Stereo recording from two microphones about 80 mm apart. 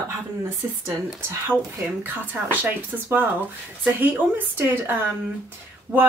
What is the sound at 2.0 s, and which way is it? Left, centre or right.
Speech, right.